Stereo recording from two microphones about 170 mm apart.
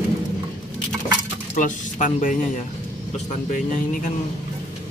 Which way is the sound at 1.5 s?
50° left (ahead or behind).